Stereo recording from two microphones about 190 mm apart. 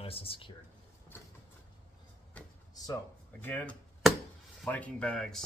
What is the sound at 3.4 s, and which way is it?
Chop, 10° left (ahead or behind).